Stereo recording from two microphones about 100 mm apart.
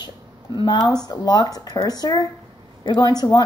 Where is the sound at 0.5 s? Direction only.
50° left (ahead or behind).